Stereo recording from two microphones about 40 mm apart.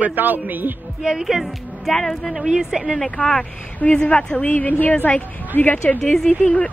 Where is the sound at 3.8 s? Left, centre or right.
Left.